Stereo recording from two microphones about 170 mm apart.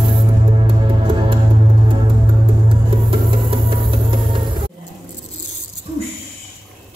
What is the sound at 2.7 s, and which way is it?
Music, 30° right (ahead or behind).